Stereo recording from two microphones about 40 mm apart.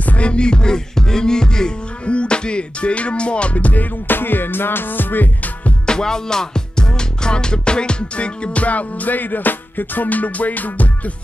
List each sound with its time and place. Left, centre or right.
0.0 s music: left
4.1 s music: left
5.9 s music: centre; by 10.9 s left